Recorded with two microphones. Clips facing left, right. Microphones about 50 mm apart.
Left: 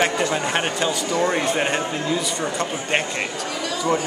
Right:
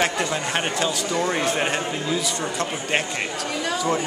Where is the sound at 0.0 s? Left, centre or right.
Centre.